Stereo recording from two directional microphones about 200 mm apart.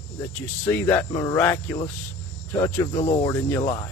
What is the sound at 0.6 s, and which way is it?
Speech, 10° left (ahead or behind).